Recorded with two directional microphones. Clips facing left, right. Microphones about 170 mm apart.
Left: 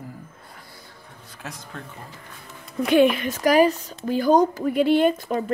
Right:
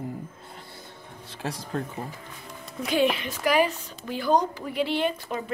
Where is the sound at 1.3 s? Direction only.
30° right (ahead or behind).